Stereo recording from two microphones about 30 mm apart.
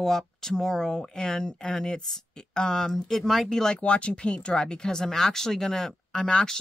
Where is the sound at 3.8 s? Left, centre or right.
Left.